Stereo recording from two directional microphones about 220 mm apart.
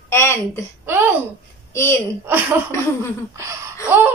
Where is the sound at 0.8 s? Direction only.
10° right (ahead or behind).